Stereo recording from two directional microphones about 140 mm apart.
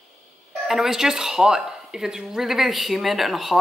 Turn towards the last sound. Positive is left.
turn(degrees=0)  # may be behind; listen again after turning